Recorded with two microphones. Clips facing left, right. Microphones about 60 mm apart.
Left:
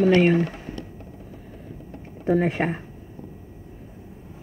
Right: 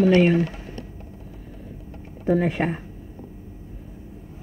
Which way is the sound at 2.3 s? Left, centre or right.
Centre.